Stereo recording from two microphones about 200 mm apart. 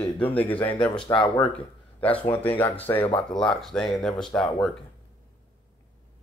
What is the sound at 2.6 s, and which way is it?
Speech, 10° left (ahead or behind).